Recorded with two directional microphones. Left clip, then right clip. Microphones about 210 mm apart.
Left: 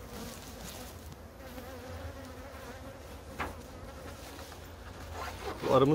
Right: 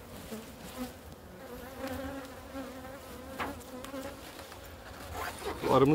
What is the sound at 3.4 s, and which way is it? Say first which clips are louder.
Bee: right 1 dB; 30° right (ahead or behind).